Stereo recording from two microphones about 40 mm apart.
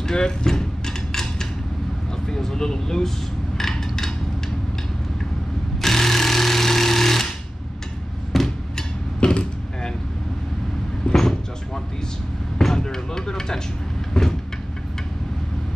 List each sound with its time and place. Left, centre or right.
0.0 s a sound: centre
2.2 s speech: centre
3.5 s a sound: centre
5.8 s sewing machine: centre
8.3 s a sound: centre
9.2 s vehicle: left
11.1 s vehicle: centre
12.5 s basketball bounce: centre
14.2 s vehicle: centre